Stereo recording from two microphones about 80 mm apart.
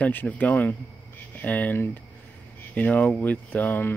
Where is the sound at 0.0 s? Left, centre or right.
Left.